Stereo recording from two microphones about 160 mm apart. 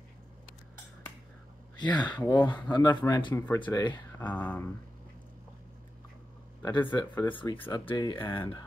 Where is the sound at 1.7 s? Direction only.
25° left (ahead or behind).